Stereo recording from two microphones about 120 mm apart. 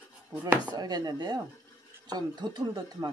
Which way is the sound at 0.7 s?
35° right (ahead or behind).